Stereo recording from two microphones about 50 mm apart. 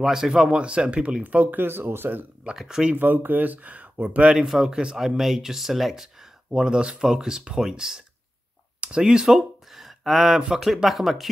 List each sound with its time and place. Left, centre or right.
0.0 s speech: centre
0.6 s speech: right
2.5 s speech: centre
3.0 s speech: right
4.5 s a man's voice: centre
6.5 s speech: centre